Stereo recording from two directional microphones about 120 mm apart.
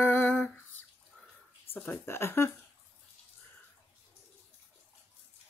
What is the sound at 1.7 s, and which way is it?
Speech, 15° left (ahead or behind).